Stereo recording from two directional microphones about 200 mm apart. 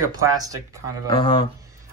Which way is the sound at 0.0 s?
15° right (ahead or behind).